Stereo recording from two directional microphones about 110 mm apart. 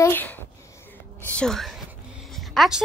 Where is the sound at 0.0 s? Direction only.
20° left (ahead or behind).